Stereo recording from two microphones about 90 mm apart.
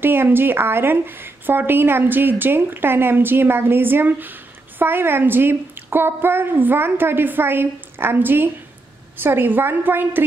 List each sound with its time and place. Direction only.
0.0 s a woman's voice: 25° right (ahead or behind)